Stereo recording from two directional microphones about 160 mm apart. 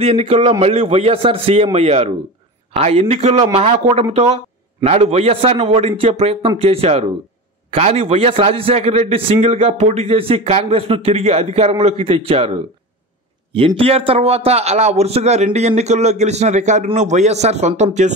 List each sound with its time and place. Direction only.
0.0 s a man's voice: 40° right (ahead or behind)